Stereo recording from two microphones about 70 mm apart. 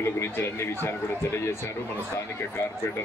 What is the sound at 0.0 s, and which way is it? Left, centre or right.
Speech, left.